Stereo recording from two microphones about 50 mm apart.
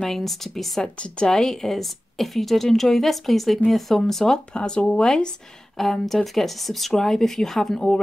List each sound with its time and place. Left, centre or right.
0.0 s a woman's voice: centre
0.9 s a woman's voice: left
5.8 s a woman's voice: centre